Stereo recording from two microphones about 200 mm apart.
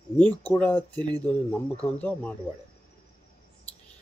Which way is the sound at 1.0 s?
20° right (ahead or behind).